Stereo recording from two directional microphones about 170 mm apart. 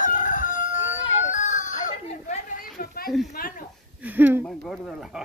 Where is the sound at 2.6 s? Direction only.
60° left (ahead or behind).